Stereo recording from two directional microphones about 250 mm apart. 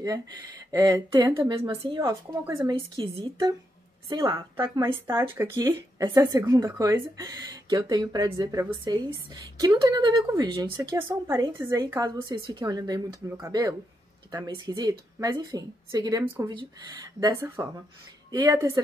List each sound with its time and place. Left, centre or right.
0.0 s speech: centre